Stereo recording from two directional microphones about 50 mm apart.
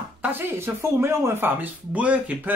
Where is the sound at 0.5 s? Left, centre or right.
Right.